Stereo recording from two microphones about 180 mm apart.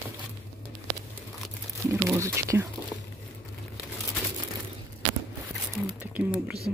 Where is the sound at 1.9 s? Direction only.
15° right (ahead or behind).